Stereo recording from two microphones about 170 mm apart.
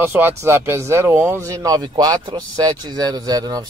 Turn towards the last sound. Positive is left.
turn(degrees=-20)  # may be behind; listen again after turning